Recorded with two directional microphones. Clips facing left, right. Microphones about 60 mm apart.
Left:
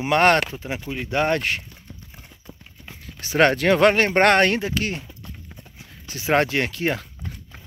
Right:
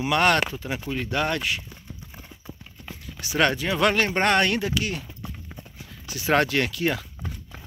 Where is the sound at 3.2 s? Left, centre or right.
Left.